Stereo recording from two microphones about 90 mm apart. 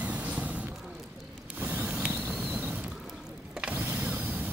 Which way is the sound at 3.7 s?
20° right (ahead or behind).